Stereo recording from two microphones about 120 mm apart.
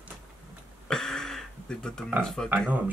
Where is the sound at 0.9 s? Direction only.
5° left (ahead or behind).